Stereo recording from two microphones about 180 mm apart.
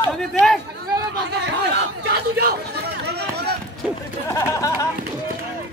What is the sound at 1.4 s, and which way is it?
Chatter, 70° right (ahead or behind).